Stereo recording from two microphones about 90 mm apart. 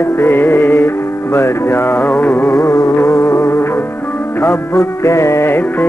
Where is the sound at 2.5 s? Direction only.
35° left (ahead or behind).